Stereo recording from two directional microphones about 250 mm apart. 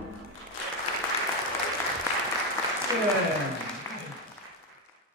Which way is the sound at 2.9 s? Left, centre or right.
Centre.